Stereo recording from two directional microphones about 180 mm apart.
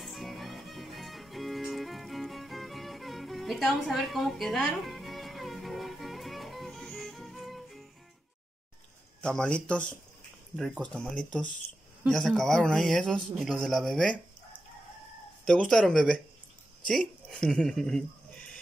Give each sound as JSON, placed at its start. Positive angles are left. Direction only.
{"t": 0.0, "sound": "music", "side_deg": 0}
{"t": 9.2, "sound": "a man's voice", "side_deg": 5}
{"t": 15.4, "sound": "a man's voice", "side_deg": 5}